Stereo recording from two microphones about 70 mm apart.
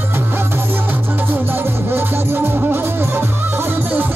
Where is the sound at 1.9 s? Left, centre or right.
Right.